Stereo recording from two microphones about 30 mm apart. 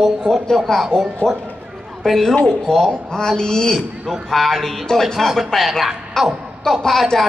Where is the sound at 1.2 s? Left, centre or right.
Left.